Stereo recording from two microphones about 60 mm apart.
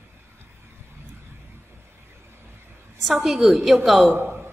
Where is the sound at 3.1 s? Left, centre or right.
Centre.